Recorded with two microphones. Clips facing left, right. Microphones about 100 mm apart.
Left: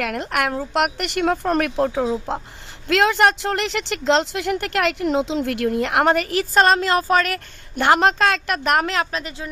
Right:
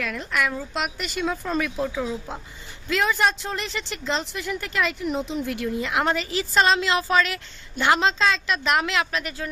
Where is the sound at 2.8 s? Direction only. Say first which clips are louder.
Left 6 dB; 75° left (ahead or behind); by 9.2 s 40° left (ahead or behind).